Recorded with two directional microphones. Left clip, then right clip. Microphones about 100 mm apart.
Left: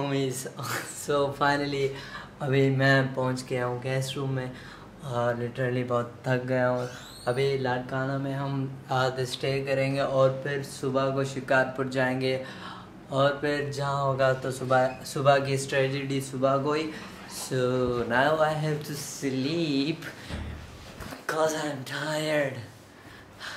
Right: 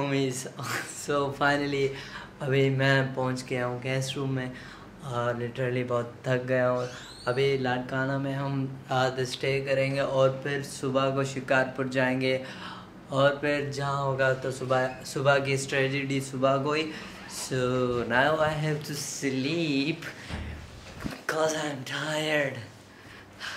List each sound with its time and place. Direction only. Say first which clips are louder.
0.0 s speech: right 1 dB; centre (ahead or behind)